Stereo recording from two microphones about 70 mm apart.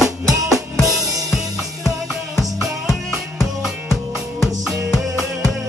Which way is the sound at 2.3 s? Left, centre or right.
Centre.